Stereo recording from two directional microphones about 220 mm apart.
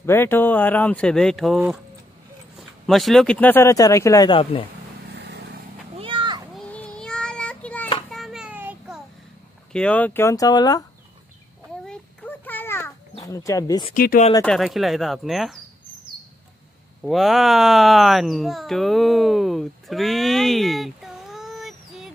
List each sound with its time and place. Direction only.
0.0 s speech: 10° left (ahead or behind)
2.9 s speech: centre (ahead or behind); by 4.6 s 25° left (ahead or behind)
5.1 s vehicle: 50° right (ahead or behind)
5.9 s children playing: 25° right (ahead or behind)
6.5 s child singing: 5° left (ahead or behind)
8.1 s a sound: centre (ahead or behind)
9.7 s speech: 5° left (ahead or behind)
11.8 s a sound: 5° left (ahead or behind)
13.1 s speech: 15° left (ahead or behind)
13.9 s speech: 40° left (ahead or behind)
14.3 s speech: 5° left (ahead or behind)
17.0 s speech: centre (ahead or behind)